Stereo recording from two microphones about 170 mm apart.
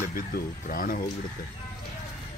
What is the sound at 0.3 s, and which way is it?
Speech, 60° left (ahead or behind).